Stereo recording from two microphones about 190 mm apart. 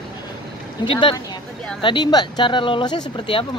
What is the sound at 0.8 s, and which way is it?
Speech, 25° left (ahead or behind).